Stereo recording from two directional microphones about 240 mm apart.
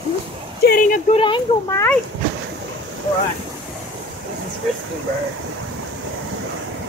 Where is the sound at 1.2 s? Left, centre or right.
Centre.